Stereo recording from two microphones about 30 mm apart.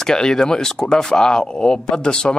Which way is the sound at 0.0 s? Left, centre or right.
Left.